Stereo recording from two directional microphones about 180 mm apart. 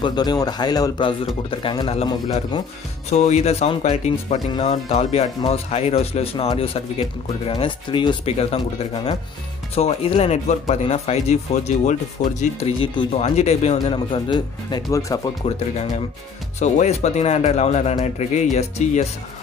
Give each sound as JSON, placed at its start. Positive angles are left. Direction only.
{"t": 0.0, "sound": "speech", "side_deg": 25}
{"t": 3.1, "sound": "speech", "side_deg": 40}
{"t": 4.5, "sound": "speech", "side_deg": 25}
{"t": 4.8, "sound": "speech", "side_deg": 35}
{"t": 13.2, "sound": "speech", "side_deg": 40}
{"t": 16.5, "sound": "speech", "side_deg": 40}